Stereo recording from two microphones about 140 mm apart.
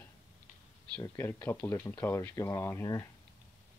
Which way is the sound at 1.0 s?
15° left (ahead or behind).